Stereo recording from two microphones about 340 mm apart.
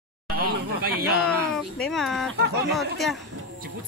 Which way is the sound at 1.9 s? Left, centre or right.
Centre.